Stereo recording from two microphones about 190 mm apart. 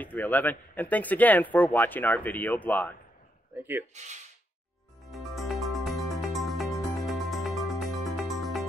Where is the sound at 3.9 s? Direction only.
40° right (ahead or behind).